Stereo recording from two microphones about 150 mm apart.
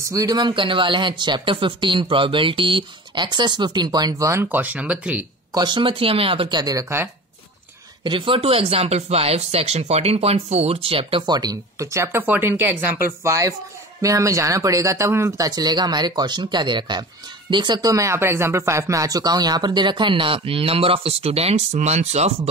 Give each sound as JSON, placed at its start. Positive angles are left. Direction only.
{"t": 0.1, "sound": "speech", "side_deg": -25}
{"t": 5.5, "sound": "speech", "side_deg": -30}
{"t": 8.0, "sound": "speech", "side_deg": -35}